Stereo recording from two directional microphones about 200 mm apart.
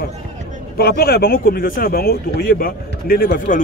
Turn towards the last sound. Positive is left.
turn(degrees=45)  # may be behind; listen again after turning